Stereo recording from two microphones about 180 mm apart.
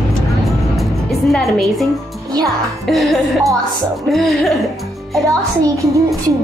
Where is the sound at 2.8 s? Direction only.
Centre (ahead or behind).